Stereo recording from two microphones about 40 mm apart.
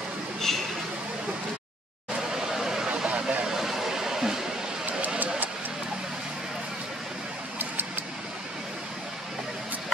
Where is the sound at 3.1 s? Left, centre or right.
Right.